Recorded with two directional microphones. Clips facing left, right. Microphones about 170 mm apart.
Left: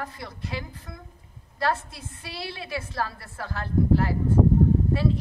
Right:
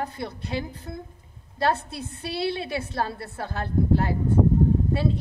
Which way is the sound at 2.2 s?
25° right (ahead or behind).